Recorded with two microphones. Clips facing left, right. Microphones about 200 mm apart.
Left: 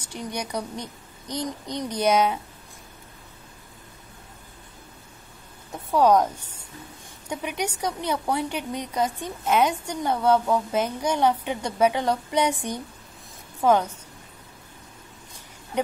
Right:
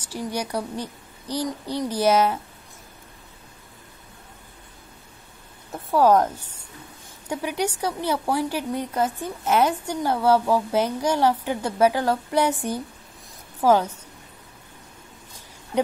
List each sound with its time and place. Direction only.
0.0 s a woman's voice: 5° right (ahead or behind)
1.4 s speech: 20° left (ahead or behind)
1.9 s a woman's voice: 5° right (ahead or behind)
5.9 s a woman's voice: 5° right (ahead or behind)